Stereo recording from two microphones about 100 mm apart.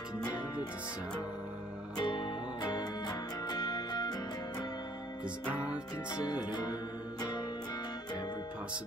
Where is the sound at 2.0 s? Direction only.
50° left (ahead or behind).